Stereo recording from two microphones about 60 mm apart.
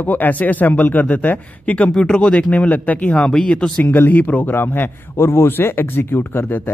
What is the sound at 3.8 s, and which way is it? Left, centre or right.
Speech, left.